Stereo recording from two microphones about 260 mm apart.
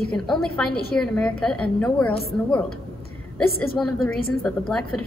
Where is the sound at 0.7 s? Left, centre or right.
Left.